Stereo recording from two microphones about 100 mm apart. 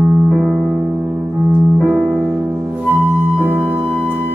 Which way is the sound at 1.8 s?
5° right (ahead or behind).